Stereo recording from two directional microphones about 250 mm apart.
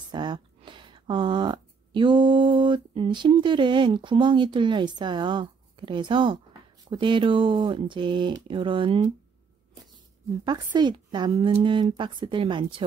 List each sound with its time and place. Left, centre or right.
0.1 s speech: centre
10.4 s a woman's voice: centre